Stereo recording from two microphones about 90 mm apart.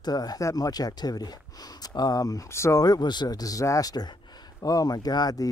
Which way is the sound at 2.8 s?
50° left (ahead or behind).